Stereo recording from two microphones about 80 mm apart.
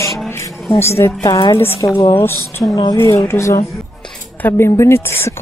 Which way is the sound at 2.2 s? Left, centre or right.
Left.